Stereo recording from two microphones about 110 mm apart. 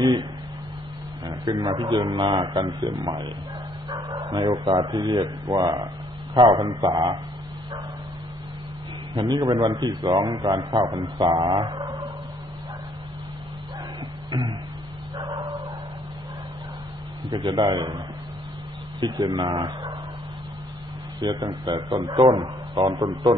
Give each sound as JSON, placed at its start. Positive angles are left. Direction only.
{"t": 0.0, "sound": "a sound", "side_deg": -40}
{"t": 1.2, "sound": "a man's voice", "side_deg": -40}
{"t": 3.9, "sound": "bow-wow", "side_deg": -40}
{"t": 4.7, "sound": "a man's voice", "side_deg": -40}
{"t": 9.1, "sound": "a man's voice", "side_deg": -45}
{"t": 15.3, "sound": "bow-wow", "side_deg": -40}
{"t": 17.3, "sound": "a man's voice", "side_deg": -40}
{"t": 21.2, "sound": "a man's voice", "side_deg": -40}